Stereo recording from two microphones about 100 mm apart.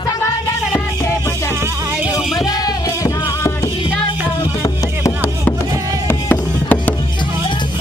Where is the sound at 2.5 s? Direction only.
40° left (ahead or behind).